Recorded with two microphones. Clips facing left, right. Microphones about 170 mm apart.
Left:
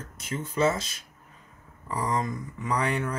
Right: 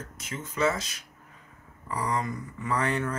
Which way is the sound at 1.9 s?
20° left (ahead or behind).